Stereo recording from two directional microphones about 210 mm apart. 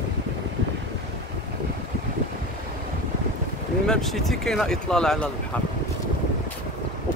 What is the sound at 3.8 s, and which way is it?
Speech, centre (ahead or behind).